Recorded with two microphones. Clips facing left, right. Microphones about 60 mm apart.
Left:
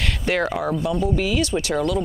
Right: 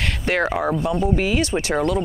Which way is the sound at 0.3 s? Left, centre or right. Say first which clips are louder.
Right 2 dB; right.